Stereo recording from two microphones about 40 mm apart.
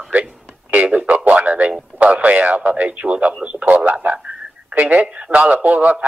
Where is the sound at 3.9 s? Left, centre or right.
Right.